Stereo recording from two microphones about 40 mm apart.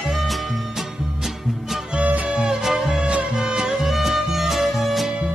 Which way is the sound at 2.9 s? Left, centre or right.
Right.